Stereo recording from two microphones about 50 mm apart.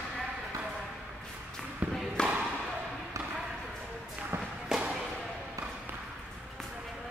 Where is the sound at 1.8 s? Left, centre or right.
Right.